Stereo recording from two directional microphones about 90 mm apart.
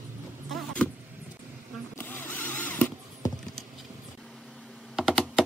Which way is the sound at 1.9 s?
20° left (ahead or behind).